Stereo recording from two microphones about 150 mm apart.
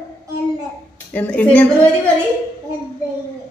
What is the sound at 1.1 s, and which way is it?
Speech, 10° left (ahead or behind).